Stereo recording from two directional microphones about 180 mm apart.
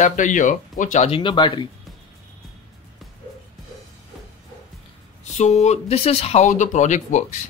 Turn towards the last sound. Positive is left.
turn(degrees=40)  # may be behind; listen again after turning